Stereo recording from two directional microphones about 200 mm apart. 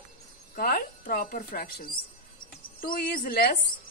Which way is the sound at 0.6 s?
45° left (ahead or behind).